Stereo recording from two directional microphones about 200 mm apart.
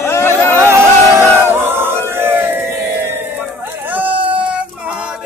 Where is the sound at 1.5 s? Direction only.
10° right (ahead or behind).